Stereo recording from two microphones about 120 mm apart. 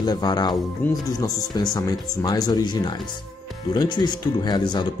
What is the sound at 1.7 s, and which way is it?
Speech, 35° left (ahead or behind).